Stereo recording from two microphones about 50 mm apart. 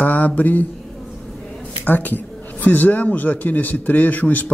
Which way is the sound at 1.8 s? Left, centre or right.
Left.